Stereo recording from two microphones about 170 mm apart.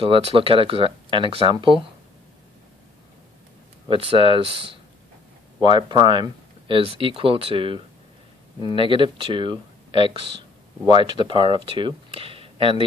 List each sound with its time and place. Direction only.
0.0 s speech: 35° right (ahead or behind)
3.9 s speech: 35° right (ahead or behind)